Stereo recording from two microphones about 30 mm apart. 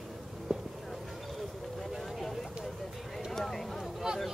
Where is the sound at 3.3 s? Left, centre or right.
Centre.